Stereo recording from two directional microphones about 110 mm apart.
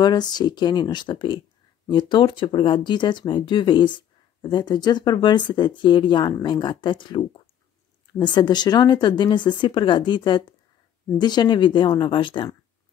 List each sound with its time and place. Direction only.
0.0 s speech: 40° left (ahead or behind)